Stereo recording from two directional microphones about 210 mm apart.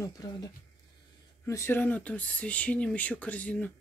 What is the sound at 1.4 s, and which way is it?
Speech, 10° left (ahead or behind).